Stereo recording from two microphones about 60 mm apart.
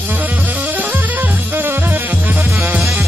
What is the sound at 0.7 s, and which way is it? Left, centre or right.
Music, right.